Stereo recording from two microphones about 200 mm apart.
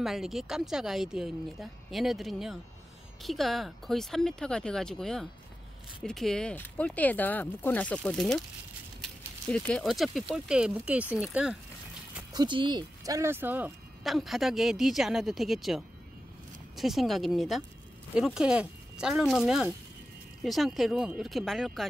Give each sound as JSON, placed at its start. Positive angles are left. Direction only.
{"t": 0.0, "sound": "speech", "side_deg": 0}
{"t": 12.3, "sound": "speech", "side_deg": -20}